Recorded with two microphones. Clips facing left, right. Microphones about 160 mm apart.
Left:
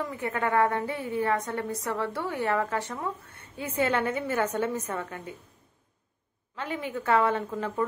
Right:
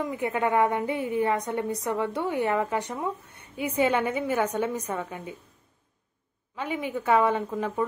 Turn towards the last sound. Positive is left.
turn(degrees=-15)  # may be behind; listen again after turning